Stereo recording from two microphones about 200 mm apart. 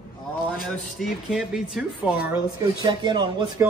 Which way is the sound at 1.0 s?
Centre (ahead or behind).